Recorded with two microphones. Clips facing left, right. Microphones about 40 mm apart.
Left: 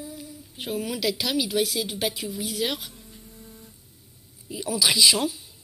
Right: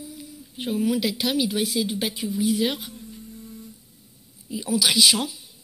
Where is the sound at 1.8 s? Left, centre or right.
Left.